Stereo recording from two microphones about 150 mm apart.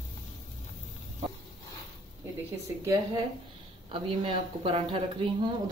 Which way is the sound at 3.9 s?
35° right (ahead or behind).